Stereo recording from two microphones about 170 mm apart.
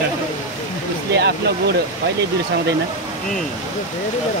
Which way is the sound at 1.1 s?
80° right.